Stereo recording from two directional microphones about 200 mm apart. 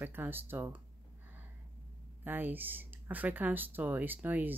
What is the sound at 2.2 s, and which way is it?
Speech, 10° right (ahead or behind).